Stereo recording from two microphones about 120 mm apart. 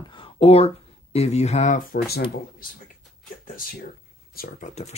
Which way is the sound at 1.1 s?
65° left (ahead or behind).